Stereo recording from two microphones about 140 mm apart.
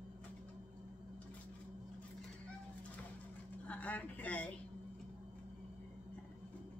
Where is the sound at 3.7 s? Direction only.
10° left (ahead or behind).